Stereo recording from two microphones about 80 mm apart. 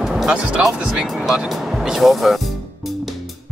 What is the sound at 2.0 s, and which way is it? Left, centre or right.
Speech, centre.